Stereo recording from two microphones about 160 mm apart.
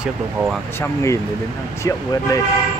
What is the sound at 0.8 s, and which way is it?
Speech, 20° left (ahead or behind).